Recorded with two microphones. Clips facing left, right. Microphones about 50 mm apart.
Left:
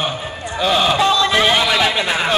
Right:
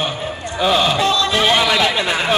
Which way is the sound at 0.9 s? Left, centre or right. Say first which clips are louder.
Left 2 dB; centre.